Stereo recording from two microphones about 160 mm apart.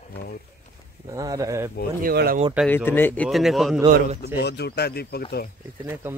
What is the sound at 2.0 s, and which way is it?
Speech, 65° right (ahead or behind).